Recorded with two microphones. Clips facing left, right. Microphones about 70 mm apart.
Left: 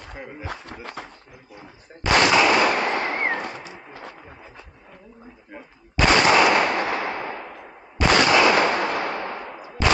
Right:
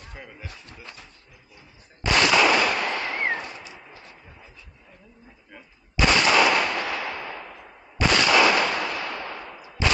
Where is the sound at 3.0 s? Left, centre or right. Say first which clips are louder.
Left 4 dB; left.